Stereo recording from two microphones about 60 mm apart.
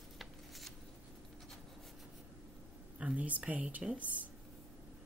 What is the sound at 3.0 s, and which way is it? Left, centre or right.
Speech, right.